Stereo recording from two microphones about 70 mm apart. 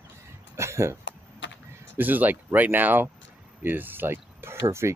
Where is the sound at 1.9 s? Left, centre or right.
Right.